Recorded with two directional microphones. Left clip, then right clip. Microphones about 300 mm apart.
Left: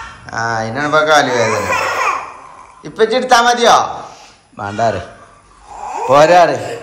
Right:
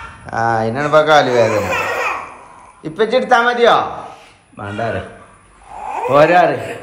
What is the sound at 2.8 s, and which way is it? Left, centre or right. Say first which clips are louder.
A man's voice: left 1 dB; centre.